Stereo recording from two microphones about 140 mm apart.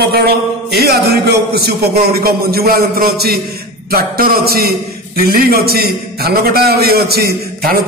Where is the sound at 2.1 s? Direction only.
90° right.